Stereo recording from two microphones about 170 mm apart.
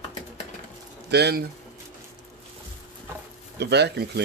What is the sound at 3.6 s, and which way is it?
Speech, 80° right.